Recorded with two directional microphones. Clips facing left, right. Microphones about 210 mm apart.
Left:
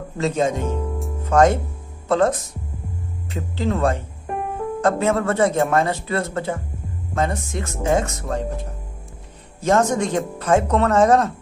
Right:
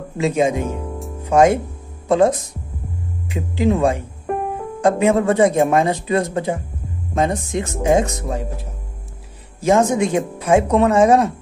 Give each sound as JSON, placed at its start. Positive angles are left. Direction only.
{"t": 0.2, "sound": "speech", "side_deg": -10}